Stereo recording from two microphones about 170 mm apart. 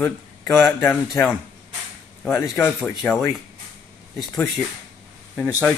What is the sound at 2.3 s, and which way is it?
Speech, 15° left (ahead or behind).